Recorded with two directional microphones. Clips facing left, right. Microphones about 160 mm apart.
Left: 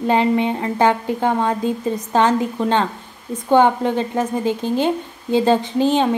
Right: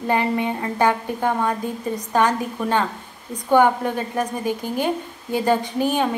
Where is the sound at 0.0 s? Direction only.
20° left (ahead or behind).